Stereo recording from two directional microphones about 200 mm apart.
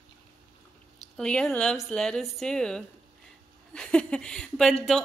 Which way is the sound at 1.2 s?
5° left (ahead or behind).